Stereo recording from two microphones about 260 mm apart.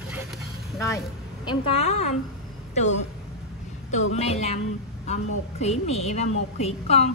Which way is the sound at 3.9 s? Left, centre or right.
Left.